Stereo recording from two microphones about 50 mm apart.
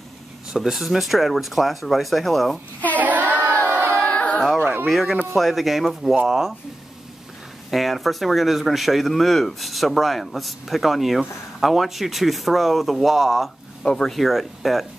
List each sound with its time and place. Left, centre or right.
0.5 s speech: centre
3.0 s child singing: right
3.6 s a sound: right
4.0 s a sound: left
4.8 s speech: centre
7.7 s speech: centre
13.8 s speech: centre
14.1 s speech: centre